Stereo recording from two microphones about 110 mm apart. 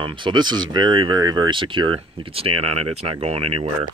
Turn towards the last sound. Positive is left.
turn(degrees=-60)  # may be behind; listen again after turning